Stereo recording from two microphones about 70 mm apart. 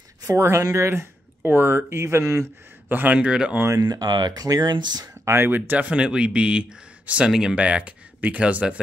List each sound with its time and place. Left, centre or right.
0.2 s speech: right
2.9 s speech: right
3.8 s speech: right
5.2 s speech: right; by 8.7 s centre